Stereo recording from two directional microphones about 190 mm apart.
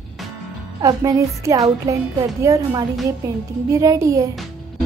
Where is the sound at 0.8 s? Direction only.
15° right (ahead or behind).